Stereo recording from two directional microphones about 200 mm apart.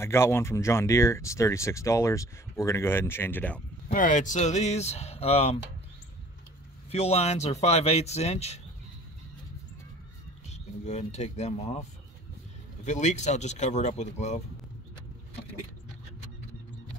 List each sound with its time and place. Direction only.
0.0 s speech: 10° left (ahead or behind)
3.9 s speech: 40° left (ahead or behind)
6.9 s speech: 30° left (ahead or behind)
10.5 s speech: 35° left (ahead or behind)
12.8 s speech: 35° left (ahead or behind)